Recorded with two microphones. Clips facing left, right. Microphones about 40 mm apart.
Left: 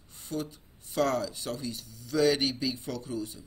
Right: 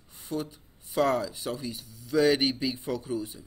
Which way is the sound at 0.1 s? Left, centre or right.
Centre.